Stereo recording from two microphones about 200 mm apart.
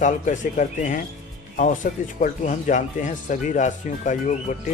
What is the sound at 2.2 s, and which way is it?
Speech, 40° left (ahead or behind).